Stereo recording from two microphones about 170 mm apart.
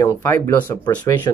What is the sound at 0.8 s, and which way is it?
Speech, 25° left (ahead or behind).